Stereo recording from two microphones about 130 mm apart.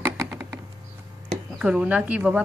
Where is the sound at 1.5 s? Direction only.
10° right (ahead or behind).